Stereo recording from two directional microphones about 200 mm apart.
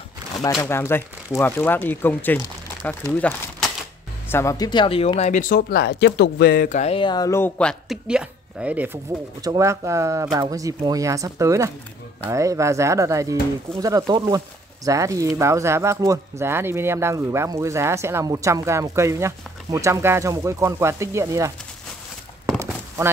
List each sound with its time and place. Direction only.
0.6 s speech: 10° left (ahead or behind); by 21.5 s 15° right (ahead or behind)